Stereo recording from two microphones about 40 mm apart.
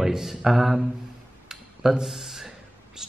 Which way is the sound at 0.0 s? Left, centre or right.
Centre.